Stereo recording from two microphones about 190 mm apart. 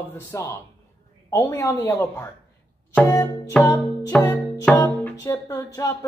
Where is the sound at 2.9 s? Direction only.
15° left (ahead or behind).